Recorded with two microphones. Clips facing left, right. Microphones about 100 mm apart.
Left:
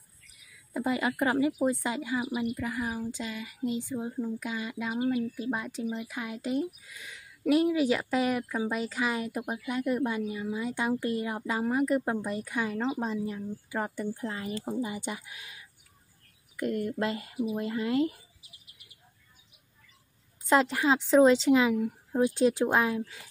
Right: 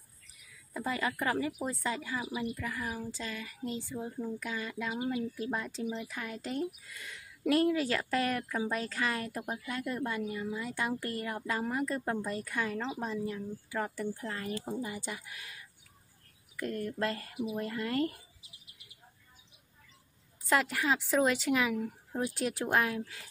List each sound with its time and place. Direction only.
0.7 s a woman's voice: 20° left (ahead or behind)
20.4 s a woman's voice: 20° left (ahead or behind)